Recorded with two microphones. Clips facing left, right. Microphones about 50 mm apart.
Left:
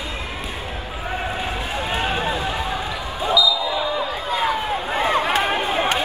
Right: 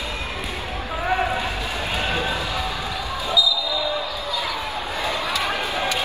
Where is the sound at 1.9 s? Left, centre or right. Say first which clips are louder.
Left 2 dB; left.